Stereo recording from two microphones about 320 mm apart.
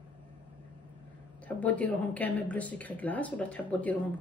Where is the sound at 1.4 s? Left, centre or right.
Centre.